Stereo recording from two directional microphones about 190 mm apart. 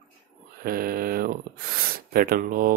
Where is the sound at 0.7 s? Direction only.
50° right (ahead or behind).